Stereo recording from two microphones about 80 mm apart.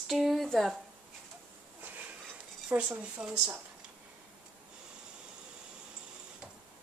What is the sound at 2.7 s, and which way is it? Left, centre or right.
Speech, centre.